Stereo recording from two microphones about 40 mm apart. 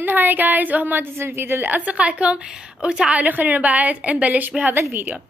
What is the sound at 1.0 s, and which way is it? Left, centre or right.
Speech, right.